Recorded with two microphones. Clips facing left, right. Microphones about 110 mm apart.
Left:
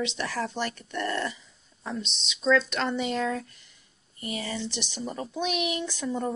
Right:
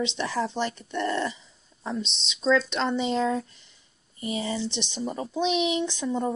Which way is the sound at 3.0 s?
30° right (ahead or behind).